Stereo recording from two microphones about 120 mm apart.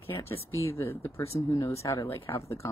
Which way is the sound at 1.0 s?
20° left (ahead or behind).